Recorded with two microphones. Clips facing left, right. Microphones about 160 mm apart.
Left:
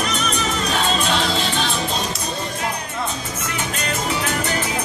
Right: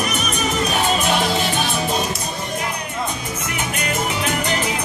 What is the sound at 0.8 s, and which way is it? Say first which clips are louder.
Music: right 1 dB; 15° right (ahead or behind).